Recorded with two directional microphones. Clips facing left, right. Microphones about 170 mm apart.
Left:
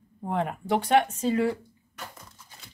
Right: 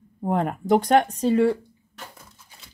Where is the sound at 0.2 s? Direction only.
45° right (ahead or behind).